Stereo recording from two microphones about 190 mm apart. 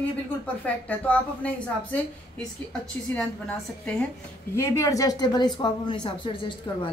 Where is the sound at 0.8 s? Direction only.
10° left (ahead or behind).